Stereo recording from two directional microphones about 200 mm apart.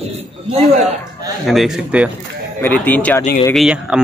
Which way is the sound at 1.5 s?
Centre (ahead or behind).